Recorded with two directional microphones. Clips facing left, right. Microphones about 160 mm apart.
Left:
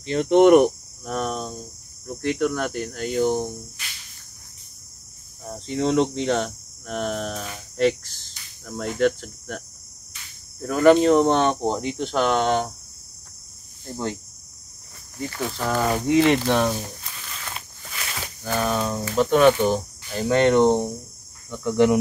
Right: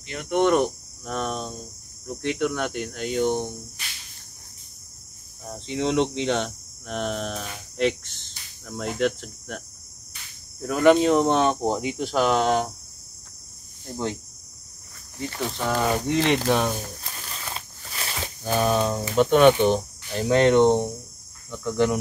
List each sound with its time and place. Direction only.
0.0 s speech: 30° left (ahead or behind)
1.0 s hum: 5° left (ahead or behind)
5.5 s hum: centre (ahead or behind)
10.6 s hum: centre (ahead or behind)
13.8 s hum: centre (ahead or behind)
15.1 s hum: centre (ahead or behind)
17.2 s a sound: 30° right (ahead or behind)
19.1 s hum: centre (ahead or behind)